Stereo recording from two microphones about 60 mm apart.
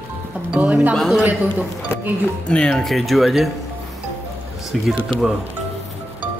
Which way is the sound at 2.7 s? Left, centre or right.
Centre.